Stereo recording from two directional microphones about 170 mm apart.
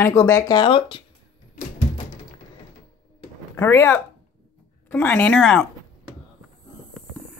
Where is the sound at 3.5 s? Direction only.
15° left (ahead or behind).